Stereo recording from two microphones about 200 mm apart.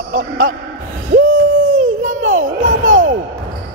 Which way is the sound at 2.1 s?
80° right.